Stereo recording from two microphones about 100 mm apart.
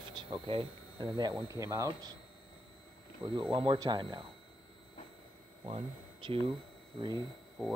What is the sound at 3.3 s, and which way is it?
Speech, 60° right (ahead or behind).